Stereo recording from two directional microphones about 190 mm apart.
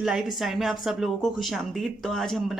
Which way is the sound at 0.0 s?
Centre (ahead or behind).